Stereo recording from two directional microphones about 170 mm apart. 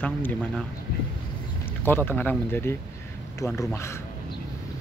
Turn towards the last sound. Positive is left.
turn(degrees=15)  # may be behind; listen again after turning